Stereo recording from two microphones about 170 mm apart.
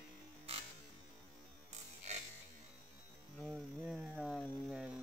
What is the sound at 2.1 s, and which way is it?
Music, 40° right (ahead or behind).